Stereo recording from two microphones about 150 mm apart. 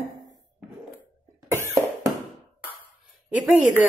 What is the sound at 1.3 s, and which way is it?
Cough, 15° right (ahead or behind).